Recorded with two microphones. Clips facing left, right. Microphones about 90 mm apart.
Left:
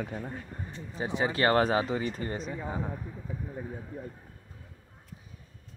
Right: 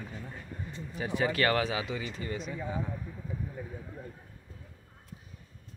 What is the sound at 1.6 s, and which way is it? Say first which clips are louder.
Speech: left 6 dB; 40° left (ahead or behind).